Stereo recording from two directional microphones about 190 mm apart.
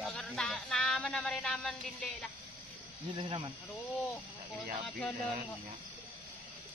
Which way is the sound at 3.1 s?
30° right (ahead or behind).